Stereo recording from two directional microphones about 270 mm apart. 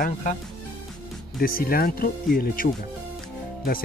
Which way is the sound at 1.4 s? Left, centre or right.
Left.